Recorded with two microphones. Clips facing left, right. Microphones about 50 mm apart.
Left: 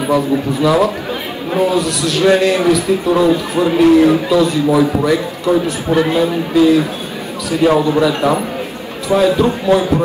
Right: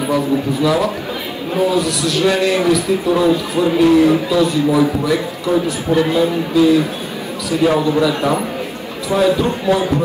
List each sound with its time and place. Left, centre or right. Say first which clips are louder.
0.1 s a man's voice: left 3 dB; left